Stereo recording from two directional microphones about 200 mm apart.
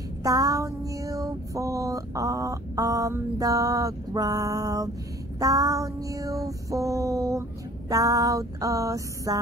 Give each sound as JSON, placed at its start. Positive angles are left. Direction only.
{"t": 0.2, "sound": "child singing", "side_deg": -20}
{"t": 5.4, "sound": "female singing", "side_deg": -15}
{"t": 7.9, "sound": "music", "side_deg": -15}